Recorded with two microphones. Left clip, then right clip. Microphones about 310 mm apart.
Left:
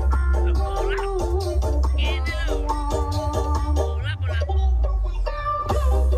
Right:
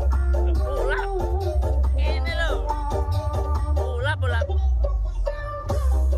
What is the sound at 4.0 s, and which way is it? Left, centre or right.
Music, centre.